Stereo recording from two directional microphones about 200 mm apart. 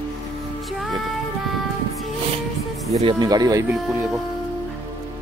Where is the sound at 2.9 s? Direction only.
30° right (ahead or behind).